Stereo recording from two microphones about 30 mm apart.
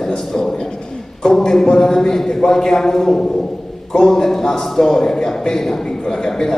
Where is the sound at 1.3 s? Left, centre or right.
Centre.